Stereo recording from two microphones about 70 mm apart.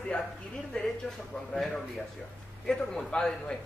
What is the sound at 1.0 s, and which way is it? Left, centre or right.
A man's voice, centre.